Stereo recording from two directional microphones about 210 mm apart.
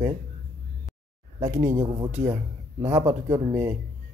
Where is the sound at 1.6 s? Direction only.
10° right (ahead or behind).